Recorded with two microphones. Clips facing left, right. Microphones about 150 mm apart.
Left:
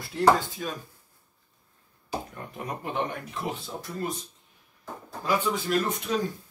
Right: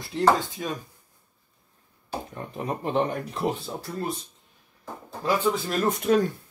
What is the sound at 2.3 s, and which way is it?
Speech, 25° right (ahead or behind).